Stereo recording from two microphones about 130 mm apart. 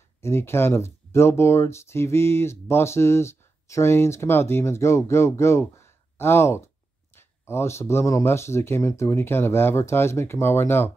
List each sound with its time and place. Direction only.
0.2 s speech: 20° left (ahead or behind)